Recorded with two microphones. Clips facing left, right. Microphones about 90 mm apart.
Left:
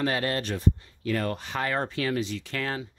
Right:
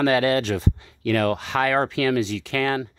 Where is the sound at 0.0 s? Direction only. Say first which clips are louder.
Right 8 dB; 90° right.